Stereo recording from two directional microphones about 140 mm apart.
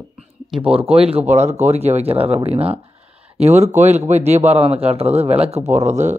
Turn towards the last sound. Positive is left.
turn(degrees=-55)  # may be behind; listen again after turning